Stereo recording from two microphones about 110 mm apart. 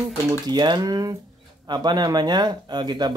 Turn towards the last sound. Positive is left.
turn(degrees=-40)  # may be behind; listen again after turning